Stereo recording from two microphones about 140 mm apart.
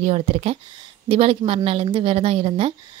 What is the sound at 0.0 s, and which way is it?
A woman's voice, 50° right (ahead or behind).